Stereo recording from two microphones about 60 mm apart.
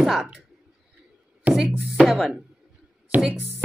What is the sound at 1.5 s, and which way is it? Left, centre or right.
Music, right.